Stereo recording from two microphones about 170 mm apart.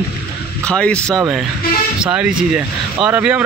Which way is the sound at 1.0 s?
15° right (ahead or behind).